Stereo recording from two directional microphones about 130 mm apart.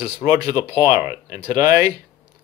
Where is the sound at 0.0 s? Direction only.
20° right (ahead or behind).